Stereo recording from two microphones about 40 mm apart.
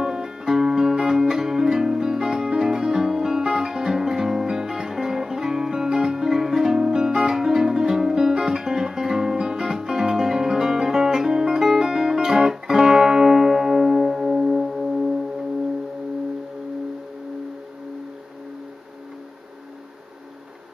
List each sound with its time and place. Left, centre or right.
0.0 s music: centre